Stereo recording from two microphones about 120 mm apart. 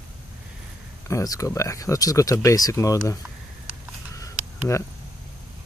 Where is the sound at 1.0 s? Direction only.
30° left (ahead or behind).